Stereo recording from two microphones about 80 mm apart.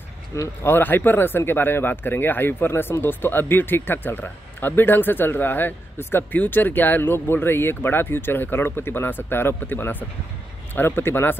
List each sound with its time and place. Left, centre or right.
0.3 s speech: left
0.7 s speech: left